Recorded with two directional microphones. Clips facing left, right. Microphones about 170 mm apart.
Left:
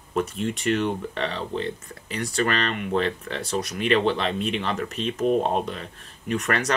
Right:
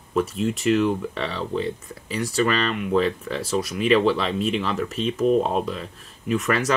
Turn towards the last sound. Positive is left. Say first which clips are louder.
# right 3 dB
turn(degrees=0)  # may be behind; listen again after turning